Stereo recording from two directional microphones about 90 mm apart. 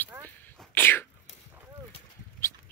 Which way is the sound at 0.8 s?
25° left (ahead or behind).